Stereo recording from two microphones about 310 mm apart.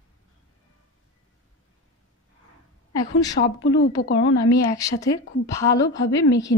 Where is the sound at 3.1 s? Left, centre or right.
Left.